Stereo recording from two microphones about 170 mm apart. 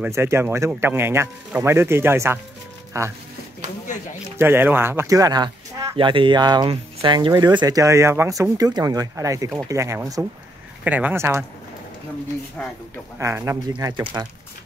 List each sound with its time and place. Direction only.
0.0 s speech: 15° right (ahead or behind)
4.4 s speech: 10° right (ahead or behind)
13.2 s speech: 15° right (ahead or behind)